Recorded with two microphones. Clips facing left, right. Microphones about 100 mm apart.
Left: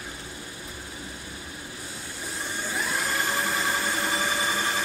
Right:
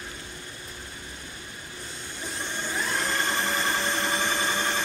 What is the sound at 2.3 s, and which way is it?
Vacuum cleaner, 5° left (ahead or behind).